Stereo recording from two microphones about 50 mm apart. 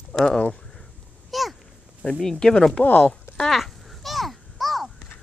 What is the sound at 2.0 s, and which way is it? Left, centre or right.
Speech, centre.